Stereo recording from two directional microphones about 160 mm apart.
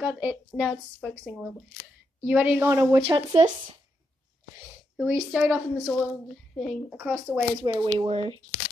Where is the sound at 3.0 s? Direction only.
30° right (ahead or behind).